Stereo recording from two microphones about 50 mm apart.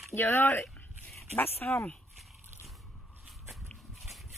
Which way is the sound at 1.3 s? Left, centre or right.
Left.